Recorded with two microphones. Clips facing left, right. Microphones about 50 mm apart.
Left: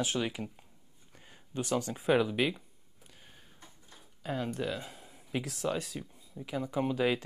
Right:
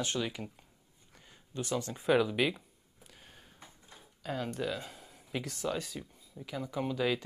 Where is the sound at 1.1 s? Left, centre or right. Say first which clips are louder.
Left 3 dB; left.